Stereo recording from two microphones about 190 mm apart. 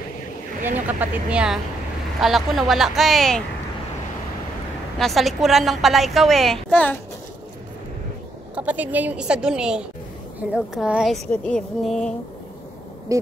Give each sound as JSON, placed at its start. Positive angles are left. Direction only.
{"t": 0.7, "sound": "a woman's voice", "side_deg": -10}
{"t": 4.9, "sound": "a woman's voice", "side_deg": 0}
{"t": 8.5, "sound": "a woman's voice", "side_deg": -10}
{"t": 13.1, "sound": "owl", "side_deg": -15}